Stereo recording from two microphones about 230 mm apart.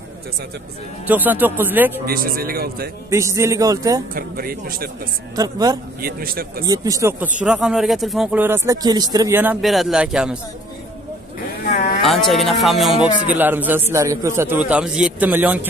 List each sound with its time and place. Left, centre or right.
1.0 s speech: centre
2.0 s speech: right
3.1 s speech: centre
4.1 s speech: right
5.3 s speech: centre
6.0 s speech: right
6.6 s speech: centre
12.0 s speech: centre